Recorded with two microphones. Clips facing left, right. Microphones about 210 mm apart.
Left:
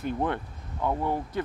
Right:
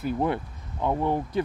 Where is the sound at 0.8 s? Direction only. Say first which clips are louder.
Right 3 dB; 20° right (ahead or behind).